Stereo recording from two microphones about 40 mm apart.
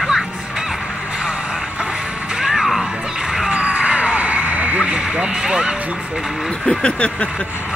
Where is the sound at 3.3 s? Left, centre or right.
Centre.